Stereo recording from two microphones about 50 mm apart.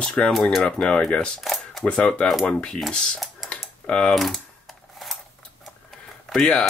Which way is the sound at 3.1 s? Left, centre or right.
Centre.